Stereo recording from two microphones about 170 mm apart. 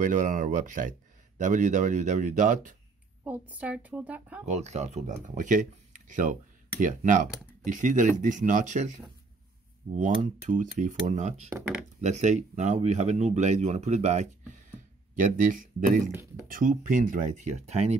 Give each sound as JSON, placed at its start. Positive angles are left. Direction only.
{"t": 0.0, "sound": "speech", "side_deg": -50}
{"t": 3.3, "sound": "a woman's voice", "side_deg": -10}
{"t": 4.5, "sound": "speech", "side_deg": -40}
{"t": 16.1, "sound": "a woman's voice", "side_deg": -15}
{"t": 16.4, "sound": "speech", "side_deg": -50}